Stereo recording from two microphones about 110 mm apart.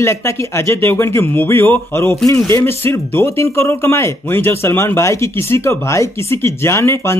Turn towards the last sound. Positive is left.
turn(degrees=25)  # may be behind; listen again after turning